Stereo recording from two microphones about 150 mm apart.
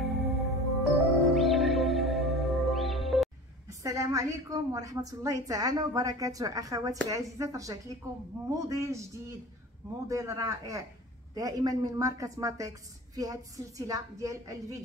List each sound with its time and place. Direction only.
0.3 s music: centre (ahead or behind)
3.6 s a woman's voice: 20° right (ahead or behind)
10.0 s a woman's voice: 20° right (ahead or behind)